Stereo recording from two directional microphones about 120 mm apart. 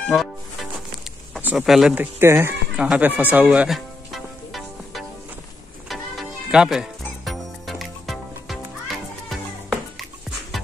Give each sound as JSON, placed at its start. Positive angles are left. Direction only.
{"t": 0.1, "sound": "music", "side_deg": 0}
{"t": 1.4, "sound": "speech", "side_deg": -10}
{"t": 2.1, "sound": "speech", "side_deg": -20}
{"t": 2.7, "sound": "music", "side_deg": -10}
{"t": 6.5, "sound": "music", "side_deg": -5}